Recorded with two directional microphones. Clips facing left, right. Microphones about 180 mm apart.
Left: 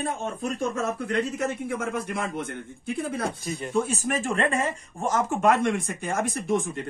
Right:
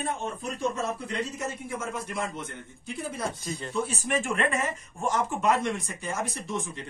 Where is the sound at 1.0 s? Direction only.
55° left (ahead or behind).